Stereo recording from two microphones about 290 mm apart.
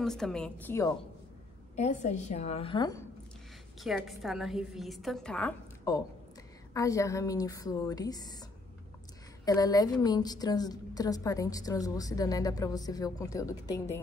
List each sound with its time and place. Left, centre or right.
0.0 s a woman's voice: centre
1.8 s a woman's voice: left
3.8 s a woman's voice: centre